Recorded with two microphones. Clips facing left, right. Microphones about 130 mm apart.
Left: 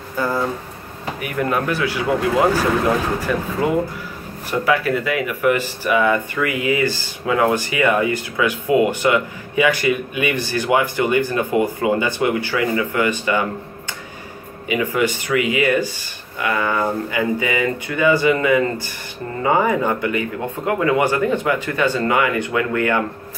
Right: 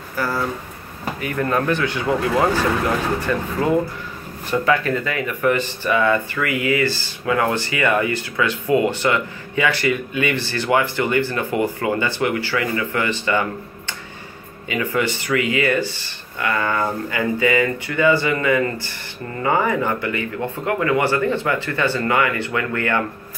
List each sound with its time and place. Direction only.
0.1 s a sound: 20° left (ahead or behind)
1.2 s speech: 15° left (ahead or behind)
3.3 s speech: 10° left (ahead or behind)
4.5 s speech: 10° left (ahead or behind)
14.7 s speech: 15° left (ahead or behind)